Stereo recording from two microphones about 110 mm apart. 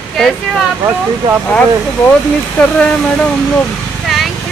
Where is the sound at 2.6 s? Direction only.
15° left (ahead or behind).